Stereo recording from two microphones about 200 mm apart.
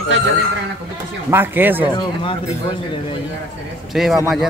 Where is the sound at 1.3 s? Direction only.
10° right (ahead or behind).